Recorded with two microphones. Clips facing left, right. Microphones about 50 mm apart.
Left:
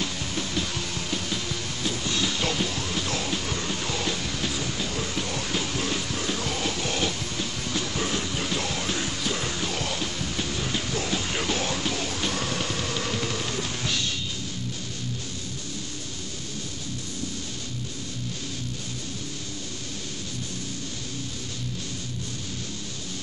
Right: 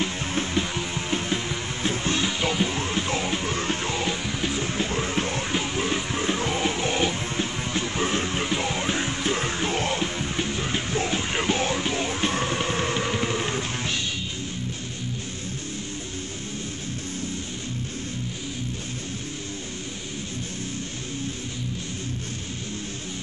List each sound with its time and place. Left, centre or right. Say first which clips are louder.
0.0 s music: right 4 dB; right
2.4 s music: right 3 dB; centre
3.9 s music: right 2 dB; right